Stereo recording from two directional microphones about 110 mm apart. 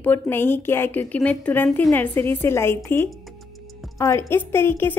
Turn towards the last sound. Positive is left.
turn(degrees=20)  # may be behind; listen again after turning